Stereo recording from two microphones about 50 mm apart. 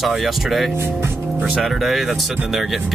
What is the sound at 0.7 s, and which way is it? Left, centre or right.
Speech, right.